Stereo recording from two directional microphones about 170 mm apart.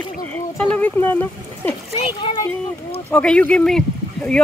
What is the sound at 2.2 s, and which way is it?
Speech, 30° left (ahead or behind).